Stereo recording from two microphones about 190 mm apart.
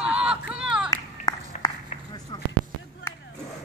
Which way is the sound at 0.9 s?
20° left (ahead or behind).